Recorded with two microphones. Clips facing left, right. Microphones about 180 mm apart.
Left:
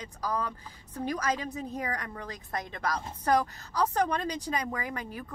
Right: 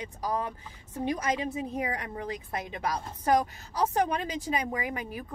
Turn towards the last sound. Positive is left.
turn(degrees=-15)  # may be behind; listen again after turning